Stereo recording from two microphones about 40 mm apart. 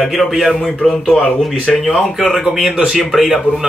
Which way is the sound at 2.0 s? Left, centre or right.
Centre.